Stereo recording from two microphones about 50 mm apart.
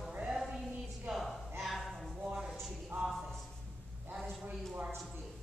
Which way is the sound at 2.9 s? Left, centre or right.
Right.